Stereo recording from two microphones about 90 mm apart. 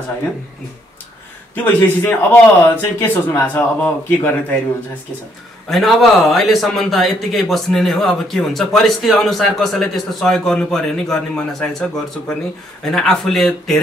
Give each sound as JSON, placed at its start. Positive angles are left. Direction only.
{"t": 1.5, "sound": "speech", "side_deg": 20}
{"t": 5.7, "sound": "speech", "side_deg": 0}
{"t": 12.8, "sound": "speech", "side_deg": 5}